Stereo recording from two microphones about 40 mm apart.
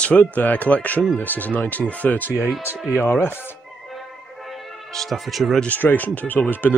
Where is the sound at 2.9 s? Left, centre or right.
Left.